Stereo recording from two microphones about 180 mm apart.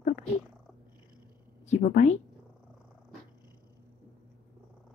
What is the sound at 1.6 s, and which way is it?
Speech, 40° left (ahead or behind).